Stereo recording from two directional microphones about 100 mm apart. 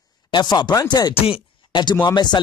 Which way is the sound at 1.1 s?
65° left (ahead or behind).